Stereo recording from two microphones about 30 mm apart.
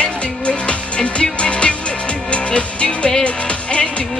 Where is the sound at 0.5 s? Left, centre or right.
Left.